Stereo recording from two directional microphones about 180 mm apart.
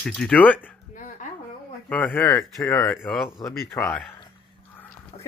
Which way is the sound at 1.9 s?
10° left (ahead or behind).